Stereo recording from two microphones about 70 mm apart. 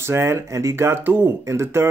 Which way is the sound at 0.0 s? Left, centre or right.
Right.